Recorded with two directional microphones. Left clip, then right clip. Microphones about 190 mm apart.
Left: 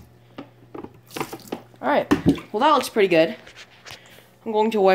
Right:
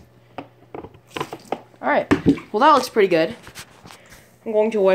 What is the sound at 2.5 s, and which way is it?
Speech, 10° right (ahead or behind).